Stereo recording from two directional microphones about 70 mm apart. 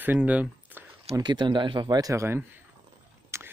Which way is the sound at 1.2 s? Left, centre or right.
Right.